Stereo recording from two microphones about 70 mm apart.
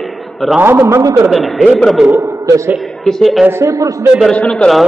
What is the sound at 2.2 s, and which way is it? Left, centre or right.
Speech, right.